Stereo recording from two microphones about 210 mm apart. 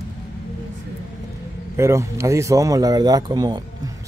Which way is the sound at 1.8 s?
15° right (ahead or behind).